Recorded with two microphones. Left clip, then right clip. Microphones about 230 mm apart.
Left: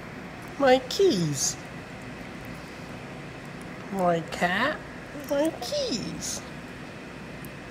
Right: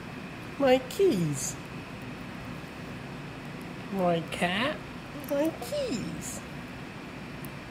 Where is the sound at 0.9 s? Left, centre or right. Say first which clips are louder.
Left 3 dB; centre.